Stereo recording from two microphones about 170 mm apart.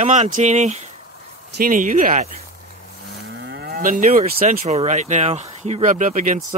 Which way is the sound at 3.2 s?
90° right.